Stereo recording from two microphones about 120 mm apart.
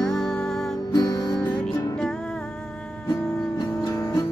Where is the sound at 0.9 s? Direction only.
30° left (ahead or behind).